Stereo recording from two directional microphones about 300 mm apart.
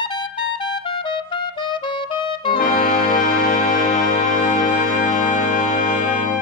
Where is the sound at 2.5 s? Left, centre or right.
Left.